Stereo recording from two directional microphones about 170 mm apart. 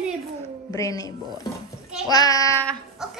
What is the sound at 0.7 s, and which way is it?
Child singing, 20° left (ahead or behind).